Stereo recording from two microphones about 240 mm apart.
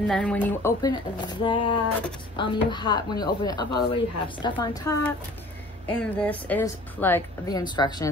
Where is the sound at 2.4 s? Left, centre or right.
Centre.